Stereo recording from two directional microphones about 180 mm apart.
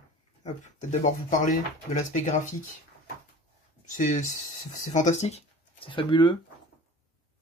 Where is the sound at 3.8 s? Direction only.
45° left (ahead or behind); by 6.3 s 25° left (ahead or behind).